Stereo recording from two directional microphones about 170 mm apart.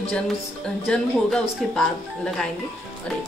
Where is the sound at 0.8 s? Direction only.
5° left (ahead or behind).